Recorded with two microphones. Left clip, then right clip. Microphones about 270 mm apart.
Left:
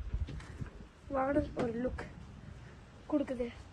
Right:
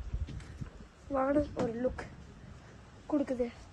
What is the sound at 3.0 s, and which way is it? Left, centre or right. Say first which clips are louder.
Speech: right 2 dB; right.